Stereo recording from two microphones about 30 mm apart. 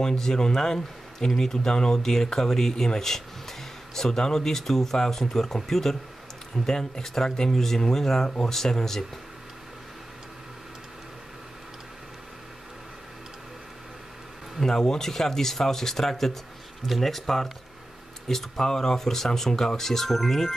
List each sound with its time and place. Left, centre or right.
0.0 s speech: left
14.6 s speech: centre